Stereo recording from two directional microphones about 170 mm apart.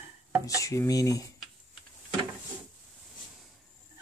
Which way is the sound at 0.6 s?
20° left (ahead or behind).